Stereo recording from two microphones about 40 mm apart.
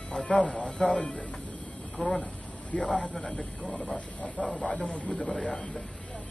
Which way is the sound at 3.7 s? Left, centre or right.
Centre.